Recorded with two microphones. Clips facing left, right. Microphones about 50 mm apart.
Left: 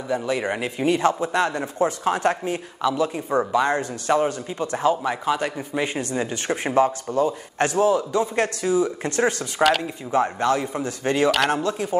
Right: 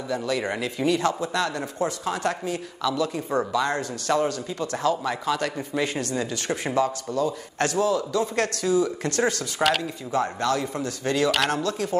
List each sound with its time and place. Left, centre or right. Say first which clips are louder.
0.1 s a man's voice: left 3 dB; left
9.6 s speech: left 4 dB; centre
10.1 s a man's voice: left 4 dB; left